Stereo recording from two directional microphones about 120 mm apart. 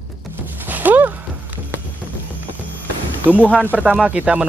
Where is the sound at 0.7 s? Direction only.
15° right (ahead or behind).